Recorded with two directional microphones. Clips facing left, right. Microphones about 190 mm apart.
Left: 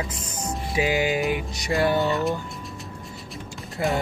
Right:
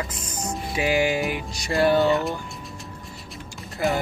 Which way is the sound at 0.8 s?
20° left (ahead or behind).